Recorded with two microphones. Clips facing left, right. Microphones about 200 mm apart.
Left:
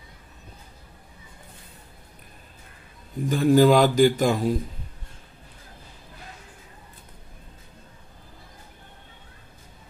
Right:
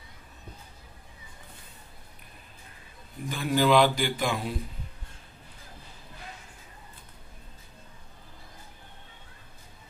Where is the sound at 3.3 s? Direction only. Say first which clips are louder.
Left 6 dB; 40° left (ahead or behind).